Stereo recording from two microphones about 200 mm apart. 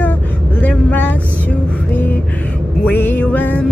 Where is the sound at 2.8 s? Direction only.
10° left (ahead or behind).